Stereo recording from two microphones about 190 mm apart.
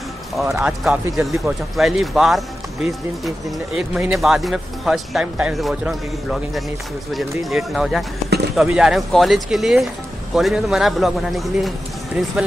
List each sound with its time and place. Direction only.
0.6 s speech: 5° right (ahead or behind)
7.1 s speech: centre (ahead or behind)